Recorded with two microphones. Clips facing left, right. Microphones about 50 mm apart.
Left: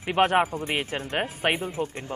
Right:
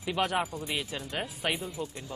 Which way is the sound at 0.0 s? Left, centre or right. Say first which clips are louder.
Left 8 dB; left.